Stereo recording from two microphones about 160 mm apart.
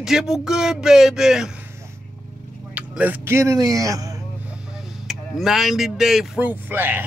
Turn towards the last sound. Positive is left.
turn(degrees=-10)  # may be behind; listen again after turning